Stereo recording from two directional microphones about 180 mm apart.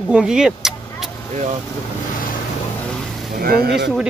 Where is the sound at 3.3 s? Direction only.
55° right (ahead or behind).